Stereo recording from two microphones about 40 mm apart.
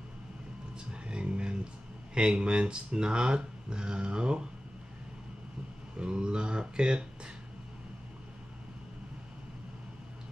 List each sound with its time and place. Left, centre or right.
1.0 s a sound: right
2.1 s speech: right
5.9 s speech: right